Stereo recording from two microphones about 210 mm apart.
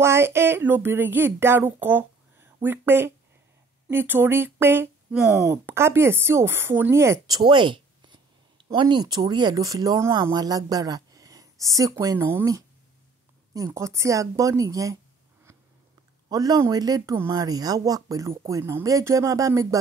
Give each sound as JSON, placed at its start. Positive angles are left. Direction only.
{"t": 0.0, "sound": "speech", "side_deg": -10}
{"t": 16.3, "sound": "speech", "side_deg": -20}